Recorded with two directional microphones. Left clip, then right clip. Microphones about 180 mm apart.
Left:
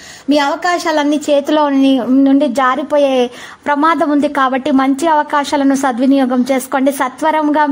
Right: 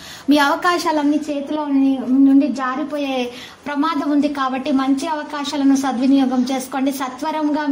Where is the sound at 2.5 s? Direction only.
60° left (ahead or behind).